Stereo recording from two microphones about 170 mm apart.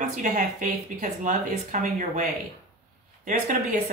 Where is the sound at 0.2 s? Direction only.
45° right (ahead or behind).